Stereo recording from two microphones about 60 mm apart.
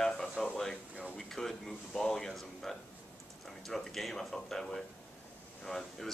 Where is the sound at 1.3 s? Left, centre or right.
Centre.